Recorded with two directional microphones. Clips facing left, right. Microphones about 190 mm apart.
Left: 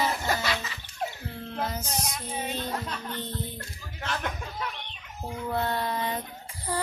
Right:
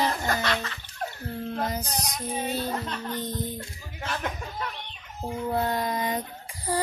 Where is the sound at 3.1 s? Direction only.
15° right (ahead or behind).